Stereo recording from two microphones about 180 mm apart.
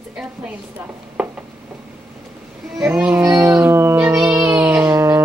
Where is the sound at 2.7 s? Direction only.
5° right (ahead or behind).